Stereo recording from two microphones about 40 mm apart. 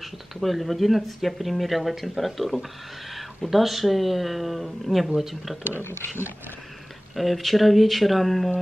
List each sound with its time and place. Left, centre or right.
0.0 s speech: centre
5.8 s speech: left
7.2 s speech: centre